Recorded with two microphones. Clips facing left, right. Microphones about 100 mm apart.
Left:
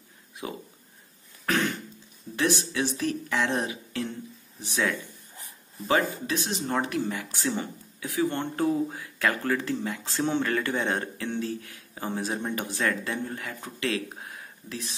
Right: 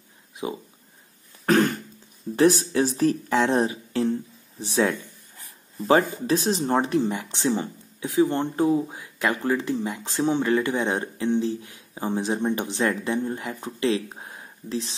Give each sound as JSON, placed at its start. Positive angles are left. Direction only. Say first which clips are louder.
{"t": 1.4, "sound": "cough", "louder": "right 7 dB", "side_deg": -40}
{"t": 2.3, "sound": "speech", "louder": "right 8 dB", "side_deg": -40}